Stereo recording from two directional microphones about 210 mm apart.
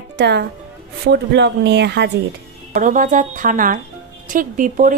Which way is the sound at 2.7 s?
40° right (ahead or behind).